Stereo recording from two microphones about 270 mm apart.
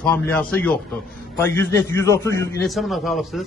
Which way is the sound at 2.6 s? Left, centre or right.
Centre.